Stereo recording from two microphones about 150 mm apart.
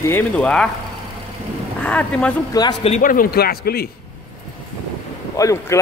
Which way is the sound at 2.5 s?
25° left (ahead or behind).